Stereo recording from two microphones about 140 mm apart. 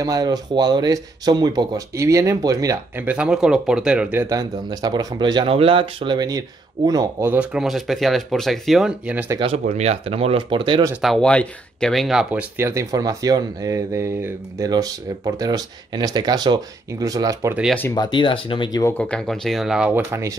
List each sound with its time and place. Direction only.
0.0 s speech: 25° right (ahead or behind)
3.1 s speech: 5° right (ahead or behind)
4.4 s speech: 30° right (ahead or behind)
7.3 s speech: 5° right (ahead or behind)
9.7 s speech: 50° right (ahead or behind)
11.0 s speech: centre (ahead or behind)
12.6 s speech: 25° right (ahead or behind)
17.9 s speech: 30° left (ahead or behind)
18.9 s speech: 5° left (ahead or behind)
19.9 s speech: 15° right (ahead or behind)